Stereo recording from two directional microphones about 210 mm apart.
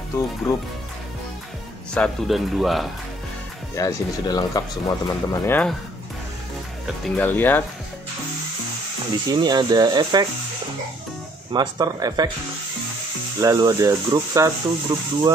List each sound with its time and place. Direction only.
2.0 s speech: centre (ahead or behind)
3.7 s speech: 15° left (ahead or behind)
7.2 s speech: 10° left (ahead or behind)
9.1 s speech: 20° right (ahead or behind)
11.5 s speech: 20° right (ahead or behind)
13.4 s speech: 15° right (ahead or behind)